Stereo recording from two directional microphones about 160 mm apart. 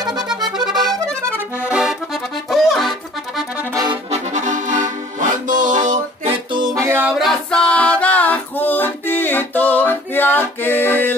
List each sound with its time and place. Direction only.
0.7 s music: centre (ahead or behind)
1.7 s accordion: 5° right (ahead or behind)
3.7 s accordion: 25° right (ahead or behind)
4.1 s accordion: 50° right (ahead or behind)
6.2 s music: 30° right (ahead or behind)
7.1 s music: centre (ahead or behind)